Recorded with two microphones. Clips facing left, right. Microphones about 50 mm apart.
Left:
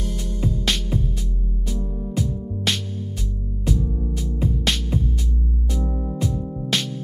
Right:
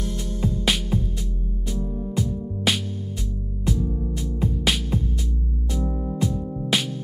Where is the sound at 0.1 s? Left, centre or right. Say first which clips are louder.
Left 2 dB; centre.